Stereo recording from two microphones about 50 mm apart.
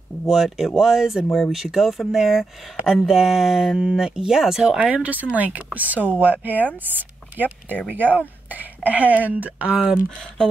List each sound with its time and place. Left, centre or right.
0.2 s speech: centre
4.7 s speech: right